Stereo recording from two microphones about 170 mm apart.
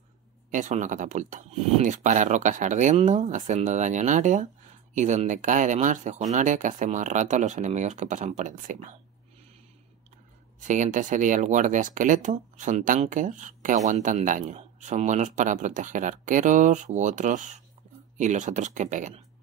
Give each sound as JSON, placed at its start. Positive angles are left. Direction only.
{"t": 0.5, "sound": "speech", "side_deg": -45}
{"t": 10.7, "sound": "speech", "side_deg": -50}